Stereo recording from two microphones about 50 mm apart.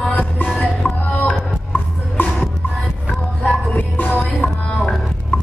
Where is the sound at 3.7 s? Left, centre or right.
Left.